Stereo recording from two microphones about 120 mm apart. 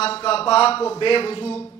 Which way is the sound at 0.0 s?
55° left (ahead or behind).